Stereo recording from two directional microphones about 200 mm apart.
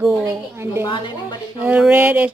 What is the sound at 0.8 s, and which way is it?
Speech, 25° left (ahead or behind).